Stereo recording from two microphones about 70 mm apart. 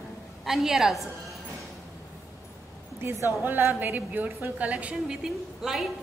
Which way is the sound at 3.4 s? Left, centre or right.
Right.